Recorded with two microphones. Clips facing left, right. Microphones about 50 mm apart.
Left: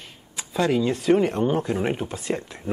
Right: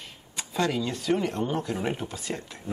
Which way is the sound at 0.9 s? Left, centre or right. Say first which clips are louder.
Left 7 dB; left.